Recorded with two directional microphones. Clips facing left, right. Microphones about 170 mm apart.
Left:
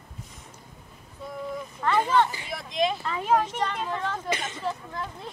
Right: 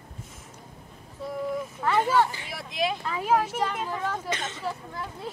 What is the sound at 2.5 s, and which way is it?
Speech, 5° right (ahead or behind).